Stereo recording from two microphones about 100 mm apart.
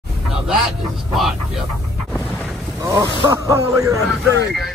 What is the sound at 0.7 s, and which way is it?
Speech, centre (ahead or behind).